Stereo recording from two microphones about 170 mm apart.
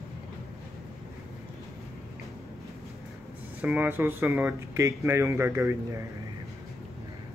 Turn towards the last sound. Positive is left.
turn(degrees=-15)  # may be behind; listen again after turning